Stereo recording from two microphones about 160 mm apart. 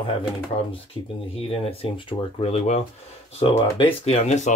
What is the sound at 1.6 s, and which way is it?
Speech, 35° left (ahead or behind).